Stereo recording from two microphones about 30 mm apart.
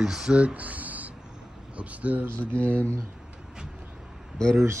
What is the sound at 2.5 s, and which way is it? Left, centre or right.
Speech, left.